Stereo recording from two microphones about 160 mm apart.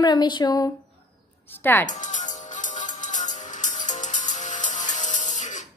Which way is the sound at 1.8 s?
50° left (ahead or behind).